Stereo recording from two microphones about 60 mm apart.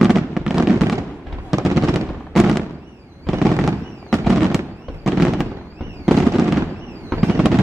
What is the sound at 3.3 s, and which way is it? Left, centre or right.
Fireworks, centre.